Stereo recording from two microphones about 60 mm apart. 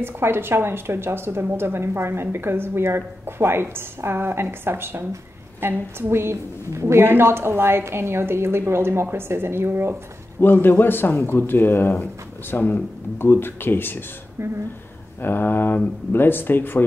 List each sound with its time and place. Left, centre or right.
0.0 s a woman's voice: right
10.4 s speech: left
15.2 s speech: left